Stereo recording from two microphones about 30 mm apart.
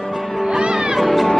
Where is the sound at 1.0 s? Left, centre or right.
Centre.